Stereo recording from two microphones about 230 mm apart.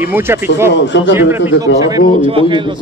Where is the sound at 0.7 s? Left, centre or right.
Left.